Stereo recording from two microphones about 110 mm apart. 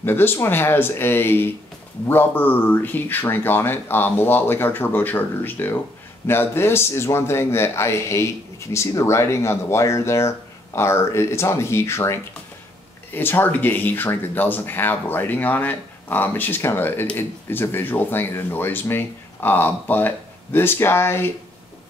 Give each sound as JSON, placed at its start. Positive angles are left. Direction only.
{"t": 0.0, "sound": "a man's voice", "side_deg": 20}